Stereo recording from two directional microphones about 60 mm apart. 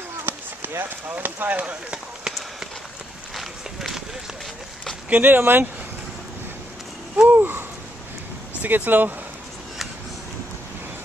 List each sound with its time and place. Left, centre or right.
0.2 s speech: right
3.3 s run: centre
5.1 s speech: right
7.2 s a sound: right
8.6 s speech: right